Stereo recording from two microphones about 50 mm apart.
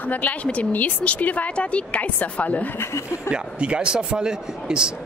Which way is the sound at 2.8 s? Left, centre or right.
Left.